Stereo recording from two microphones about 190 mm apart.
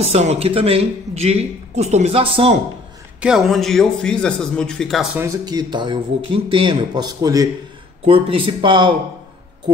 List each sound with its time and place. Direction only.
0.0 s a man's voice: 35° right (ahead or behind)
3.2 s a man's voice: 5° right (ahead or behind)
5.1 s speech: 15° right (ahead or behind)
8.0 s speech: 30° right (ahead or behind)